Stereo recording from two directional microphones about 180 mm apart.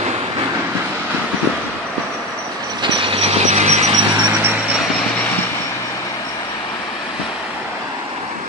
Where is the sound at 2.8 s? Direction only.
30° right (ahead or behind).